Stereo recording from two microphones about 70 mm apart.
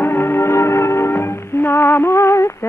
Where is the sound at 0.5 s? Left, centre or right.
Left.